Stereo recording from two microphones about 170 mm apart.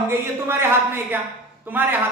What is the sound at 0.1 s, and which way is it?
A man's voice, 15° right (ahead or behind).